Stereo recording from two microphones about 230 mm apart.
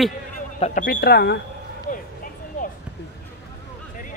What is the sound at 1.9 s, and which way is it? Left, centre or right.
Vehicle, left.